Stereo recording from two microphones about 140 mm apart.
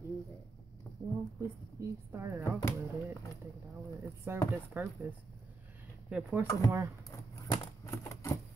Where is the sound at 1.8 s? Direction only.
20° right (ahead or behind).